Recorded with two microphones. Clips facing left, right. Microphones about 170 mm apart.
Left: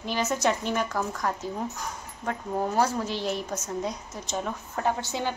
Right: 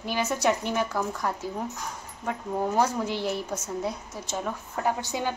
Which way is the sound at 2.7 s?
15° right (ahead or behind).